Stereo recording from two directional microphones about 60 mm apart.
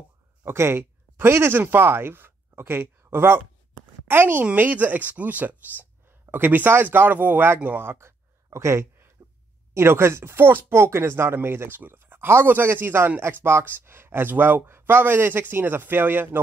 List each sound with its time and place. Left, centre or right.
0.5 s speech: right
8.5 s a sound: right
9.8 s speech: right